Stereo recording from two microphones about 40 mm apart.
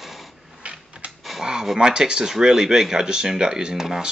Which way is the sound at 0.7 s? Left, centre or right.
Right.